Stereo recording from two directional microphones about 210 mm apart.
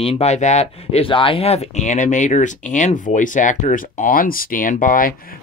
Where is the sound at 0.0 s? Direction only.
30° left (ahead or behind).